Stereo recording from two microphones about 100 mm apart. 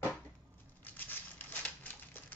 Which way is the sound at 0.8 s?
20° left (ahead or behind).